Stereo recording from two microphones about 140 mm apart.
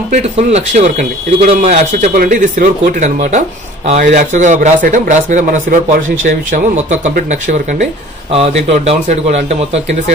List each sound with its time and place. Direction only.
0.1 s speech: 50° right (ahead or behind)
4.1 s a man's voice: 65° right (ahead or behind)